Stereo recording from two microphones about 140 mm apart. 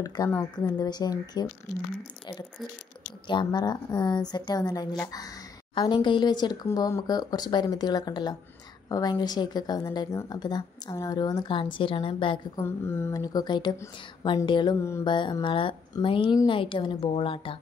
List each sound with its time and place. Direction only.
0.0 s a woman's voice: 25° left (ahead or behind)
3.3 s a woman's voice: 35° left (ahead or behind)
12.5 s a woman's voice: 15° left (ahead or behind); by 14.8 s 35° left (ahead or behind)
14.8 s a woman's voice: 20° left (ahead or behind)
15.0 s a woman's voice: 35° left (ahead or behind)